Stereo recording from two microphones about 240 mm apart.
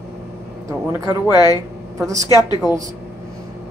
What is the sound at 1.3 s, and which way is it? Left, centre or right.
Speech, centre.